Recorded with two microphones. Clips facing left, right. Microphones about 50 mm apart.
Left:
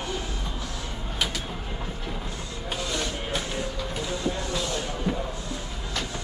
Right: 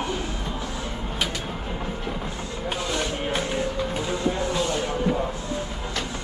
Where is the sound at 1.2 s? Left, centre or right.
Centre.